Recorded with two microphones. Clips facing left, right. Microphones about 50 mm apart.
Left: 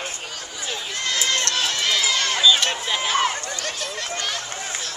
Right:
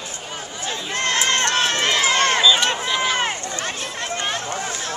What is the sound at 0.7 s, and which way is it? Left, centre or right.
Chatter, right.